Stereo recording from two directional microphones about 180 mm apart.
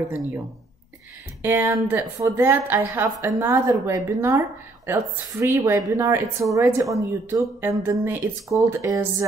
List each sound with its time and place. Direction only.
1.4 s a woman's voice: 10° right (ahead or behind)